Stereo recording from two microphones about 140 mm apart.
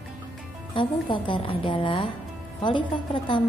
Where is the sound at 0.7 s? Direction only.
35° left (ahead or behind).